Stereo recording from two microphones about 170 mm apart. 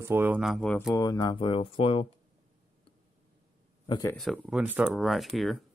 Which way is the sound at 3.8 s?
25° left (ahead or behind).